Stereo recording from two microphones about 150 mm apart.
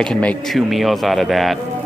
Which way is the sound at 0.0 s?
5° left (ahead or behind).